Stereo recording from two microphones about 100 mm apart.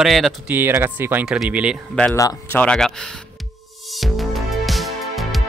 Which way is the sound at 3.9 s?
Centre (ahead or behind).